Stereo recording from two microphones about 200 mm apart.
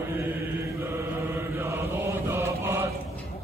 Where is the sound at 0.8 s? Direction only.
10° right (ahead or behind).